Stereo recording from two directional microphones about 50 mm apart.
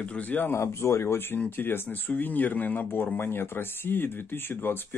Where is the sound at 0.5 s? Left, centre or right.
Left.